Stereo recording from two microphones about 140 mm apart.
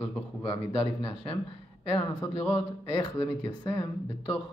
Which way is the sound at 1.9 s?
20° left (ahead or behind).